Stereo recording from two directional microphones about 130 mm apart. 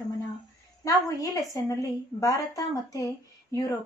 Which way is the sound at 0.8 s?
25° left (ahead or behind).